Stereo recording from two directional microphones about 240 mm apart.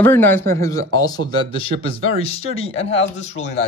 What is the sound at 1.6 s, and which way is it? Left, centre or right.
Speech, left.